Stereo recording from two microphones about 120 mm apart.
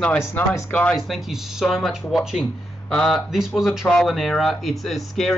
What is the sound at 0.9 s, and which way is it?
Speech, centre (ahead or behind).